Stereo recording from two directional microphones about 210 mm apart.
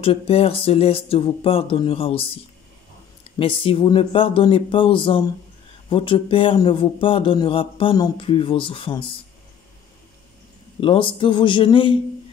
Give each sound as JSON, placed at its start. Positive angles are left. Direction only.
{"t": 0.0, "sound": "a man's voice", "side_deg": 30}
{"t": 3.3, "sound": "a man's voice", "side_deg": 25}
{"t": 10.8, "sound": "a man's voice", "side_deg": 25}